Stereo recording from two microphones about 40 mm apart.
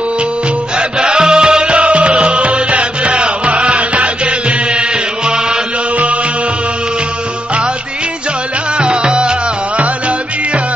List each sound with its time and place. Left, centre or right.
0.7 s music: right
8.7 s music: right